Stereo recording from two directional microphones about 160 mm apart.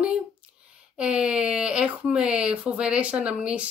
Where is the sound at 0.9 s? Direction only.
5° right (ahead or behind).